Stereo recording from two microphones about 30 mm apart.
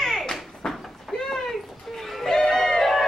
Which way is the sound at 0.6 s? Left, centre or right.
Left.